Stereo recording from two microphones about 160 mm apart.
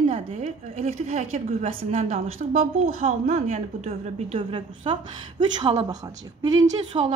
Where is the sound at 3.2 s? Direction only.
45° right (ahead or behind).